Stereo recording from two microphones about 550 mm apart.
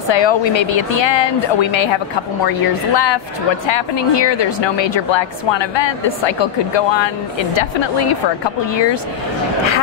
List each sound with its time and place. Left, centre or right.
0.1 s speech: left
2.4 s speech: left